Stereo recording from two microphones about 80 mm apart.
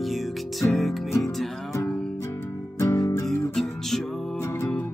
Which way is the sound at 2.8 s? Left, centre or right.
Left.